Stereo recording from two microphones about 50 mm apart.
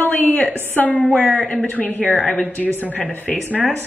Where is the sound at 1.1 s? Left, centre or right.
Centre.